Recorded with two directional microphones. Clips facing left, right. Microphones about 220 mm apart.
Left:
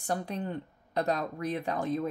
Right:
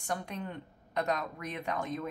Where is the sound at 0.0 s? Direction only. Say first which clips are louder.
Left 4 dB; 35° left (ahead or behind).